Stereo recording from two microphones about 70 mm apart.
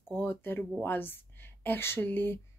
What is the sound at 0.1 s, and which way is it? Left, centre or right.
Speech, left.